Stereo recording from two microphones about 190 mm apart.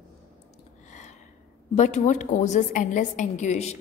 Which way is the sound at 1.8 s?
40° left (ahead or behind).